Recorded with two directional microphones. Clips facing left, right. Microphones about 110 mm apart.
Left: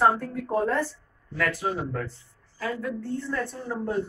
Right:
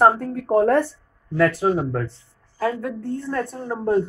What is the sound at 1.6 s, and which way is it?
Speech, 50° right (ahead or behind).